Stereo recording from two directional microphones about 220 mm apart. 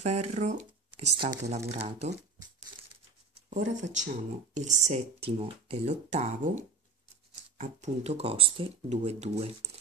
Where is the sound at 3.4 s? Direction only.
35° right (ahead or behind).